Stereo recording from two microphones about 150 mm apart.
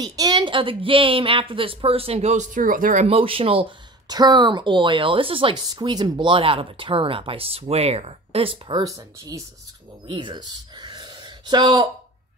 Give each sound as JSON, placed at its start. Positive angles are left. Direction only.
{"t": 0.0, "sound": "a woman's voice", "side_deg": -25}
{"t": 3.1, "sound": "a woman's voice", "side_deg": -40}
{"t": 4.1, "sound": "a woman's voice", "side_deg": -25}
{"t": 8.8, "sound": "speech", "side_deg": -20}